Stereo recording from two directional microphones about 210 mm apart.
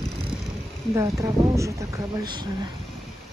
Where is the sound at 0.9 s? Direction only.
15° right (ahead or behind).